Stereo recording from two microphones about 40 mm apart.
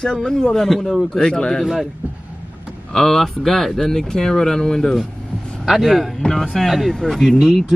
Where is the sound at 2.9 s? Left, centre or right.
Centre.